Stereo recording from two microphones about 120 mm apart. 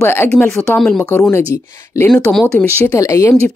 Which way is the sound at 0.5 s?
5° left (ahead or behind).